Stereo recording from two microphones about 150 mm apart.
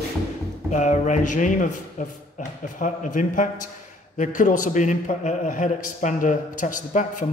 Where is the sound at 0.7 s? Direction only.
50° left (ahead or behind).